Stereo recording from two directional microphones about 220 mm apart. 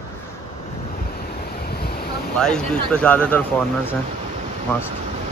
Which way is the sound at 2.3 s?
5° left (ahead or behind).